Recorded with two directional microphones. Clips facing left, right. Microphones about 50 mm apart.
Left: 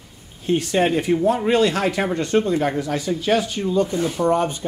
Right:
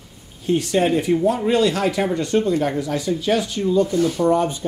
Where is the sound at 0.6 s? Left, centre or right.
Left.